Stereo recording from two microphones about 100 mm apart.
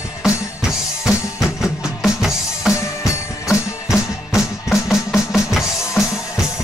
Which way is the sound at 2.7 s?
30° left (ahead or behind).